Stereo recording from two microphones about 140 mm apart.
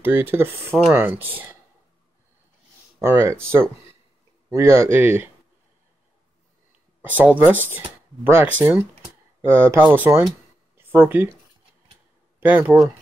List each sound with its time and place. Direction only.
0.0 s speech: 15° right (ahead or behind)
3.0 s speech: 20° right (ahead or behind)
7.0 s speech: 10° right (ahead or behind)
12.4 s speech: 10° right (ahead or behind)